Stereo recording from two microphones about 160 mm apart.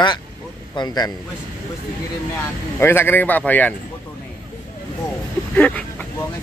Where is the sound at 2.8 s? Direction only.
15° left (ahead or behind).